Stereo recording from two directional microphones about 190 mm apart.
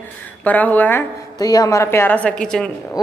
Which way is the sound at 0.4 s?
10° left (ahead or behind).